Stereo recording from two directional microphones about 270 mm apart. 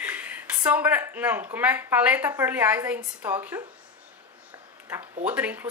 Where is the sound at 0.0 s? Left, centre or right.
Centre.